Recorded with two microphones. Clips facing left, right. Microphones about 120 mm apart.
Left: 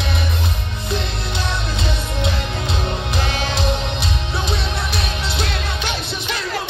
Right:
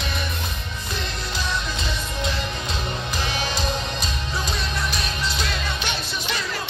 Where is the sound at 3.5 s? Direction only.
70° left (ahead or behind).